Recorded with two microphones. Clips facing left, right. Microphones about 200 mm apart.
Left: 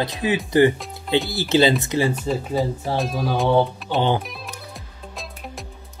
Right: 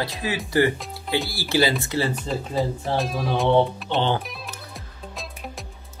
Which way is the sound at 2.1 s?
Centre (ahead or behind).